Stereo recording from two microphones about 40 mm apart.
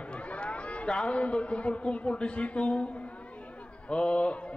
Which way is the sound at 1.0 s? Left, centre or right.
Left.